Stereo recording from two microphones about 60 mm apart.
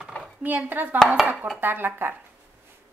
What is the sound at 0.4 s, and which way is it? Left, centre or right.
Speech, right.